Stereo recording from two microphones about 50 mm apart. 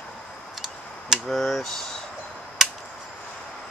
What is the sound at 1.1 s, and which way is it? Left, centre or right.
Speech, centre.